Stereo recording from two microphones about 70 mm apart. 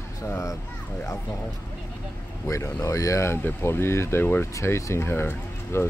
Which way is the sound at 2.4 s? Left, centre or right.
Left.